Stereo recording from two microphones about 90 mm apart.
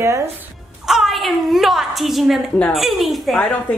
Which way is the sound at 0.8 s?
5° right (ahead or behind).